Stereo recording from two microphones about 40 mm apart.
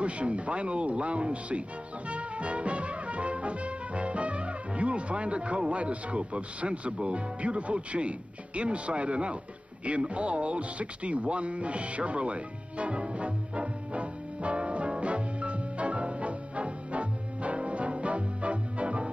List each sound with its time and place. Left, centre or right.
0.0 s speech: right
2.0 s music: right
8.5 s speech: right
13.0 s music: right